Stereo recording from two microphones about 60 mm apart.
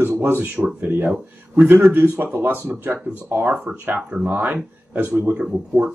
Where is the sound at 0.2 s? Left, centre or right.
Right.